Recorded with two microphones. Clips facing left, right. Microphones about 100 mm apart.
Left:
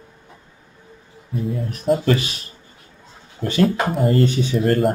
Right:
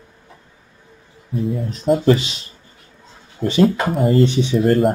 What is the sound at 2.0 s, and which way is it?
Speech, 25° right (ahead or behind).